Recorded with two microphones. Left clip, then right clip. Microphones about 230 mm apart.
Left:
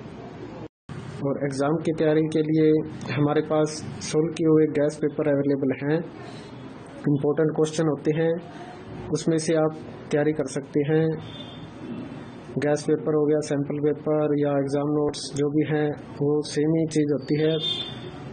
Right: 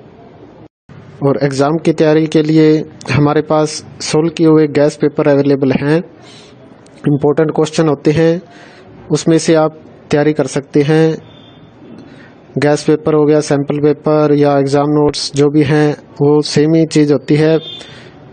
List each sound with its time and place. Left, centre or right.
1.2 s a man's voice: right
7.2 s a man's voice: right
12.5 s a man's voice: right